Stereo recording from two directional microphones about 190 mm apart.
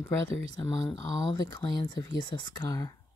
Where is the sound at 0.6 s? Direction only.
20° left (ahead or behind).